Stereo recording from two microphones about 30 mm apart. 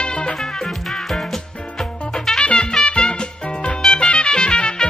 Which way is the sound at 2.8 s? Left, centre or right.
Left.